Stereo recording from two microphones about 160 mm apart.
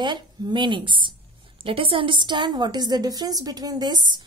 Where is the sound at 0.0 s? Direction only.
25° right (ahead or behind).